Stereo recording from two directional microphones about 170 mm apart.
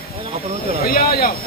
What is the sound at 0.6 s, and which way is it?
Speech, 60° left (ahead or behind).